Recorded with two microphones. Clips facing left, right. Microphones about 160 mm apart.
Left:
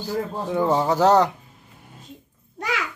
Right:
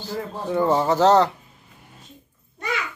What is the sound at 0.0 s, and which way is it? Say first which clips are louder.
Speech: left 3 dB; 10° left (ahead or behind).